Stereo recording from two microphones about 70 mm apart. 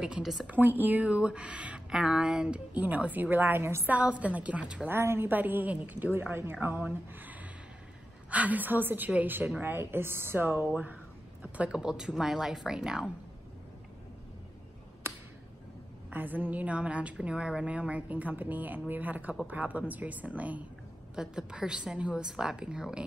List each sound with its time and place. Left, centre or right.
0.0 s speech: centre
0.5 s a woman's voice: right
3.9 s a woman's voice: right
4.8 s a woman's voice: right; by 13.1 s centre
16.1 s a woman's voice: right
21.1 s a woman's voice: centre